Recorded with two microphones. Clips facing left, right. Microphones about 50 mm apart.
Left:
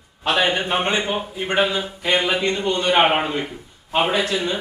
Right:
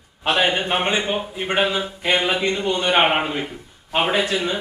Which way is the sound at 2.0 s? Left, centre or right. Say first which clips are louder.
Even; right.